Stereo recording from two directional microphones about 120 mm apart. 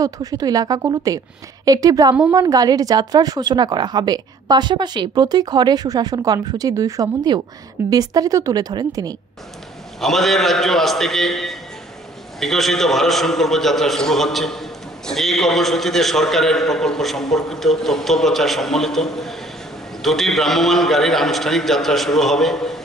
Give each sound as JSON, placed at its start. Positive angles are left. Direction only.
{"t": 0.0, "sound": "a woman's voice", "side_deg": -30}
{"t": 9.9, "sound": "a man's voice", "side_deg": 0}